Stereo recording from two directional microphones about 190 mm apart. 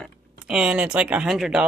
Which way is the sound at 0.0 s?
5° right (ahead or behind).